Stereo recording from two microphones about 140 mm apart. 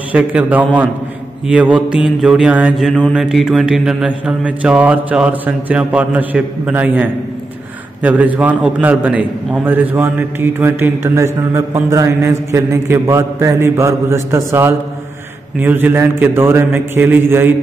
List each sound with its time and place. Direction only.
0.1 s mantra: 10° right (ahead or behind)